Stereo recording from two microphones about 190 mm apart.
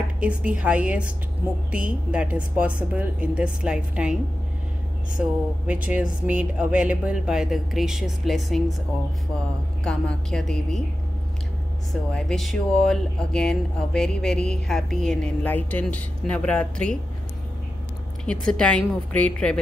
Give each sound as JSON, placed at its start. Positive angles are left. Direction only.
{"t": 0.2, "sound": "a woman's voice", "side_deg": -5}
{"t": 6.2, "sound": "speech", "side_deg": -5}
{"t": 9.8, "sound": "speech", "side_deg": 5}
{"t": 11.9, "sound": "speech", "side_deg": 5}
{"t": 18.2, "sound": "speech", "side_deg": 5}